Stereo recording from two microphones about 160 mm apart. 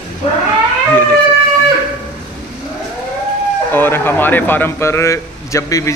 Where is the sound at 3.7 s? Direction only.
15° left (ahead or behind).